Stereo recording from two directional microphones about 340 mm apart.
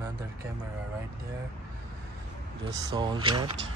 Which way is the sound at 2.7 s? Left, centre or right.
Centre.